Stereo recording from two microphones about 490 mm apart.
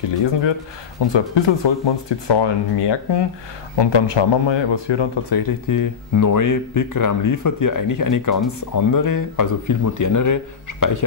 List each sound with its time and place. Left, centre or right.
0.2 s speech: left
5.7 s speech: left